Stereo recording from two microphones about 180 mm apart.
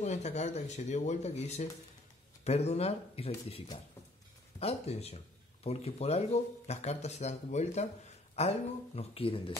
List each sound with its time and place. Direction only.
0.0 s speech: 40° left (ahead or behind)